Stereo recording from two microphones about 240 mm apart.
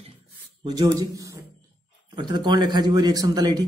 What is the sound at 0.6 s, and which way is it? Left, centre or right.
A man's voice, centre.